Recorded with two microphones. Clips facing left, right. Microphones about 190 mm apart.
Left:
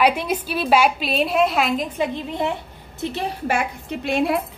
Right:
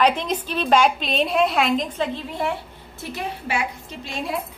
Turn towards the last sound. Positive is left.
turn(degrees=65)  # may be behind; listen again after turning